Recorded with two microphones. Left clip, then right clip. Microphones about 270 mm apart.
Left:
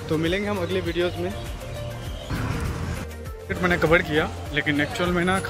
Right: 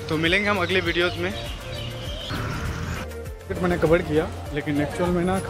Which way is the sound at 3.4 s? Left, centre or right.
Centre.